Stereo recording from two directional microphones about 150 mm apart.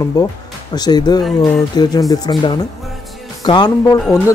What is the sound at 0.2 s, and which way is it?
Speech, 25° left (ahead or behind).